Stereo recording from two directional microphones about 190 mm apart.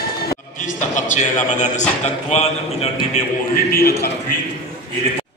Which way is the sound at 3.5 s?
50° left (ahead or behind).